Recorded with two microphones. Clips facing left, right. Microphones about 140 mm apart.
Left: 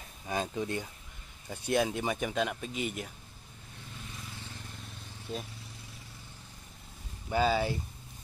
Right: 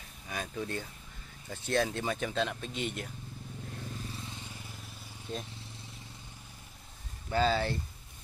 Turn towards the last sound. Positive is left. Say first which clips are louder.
# left 1 dB
turn(degrees=10)  # may be behind; listen again after turning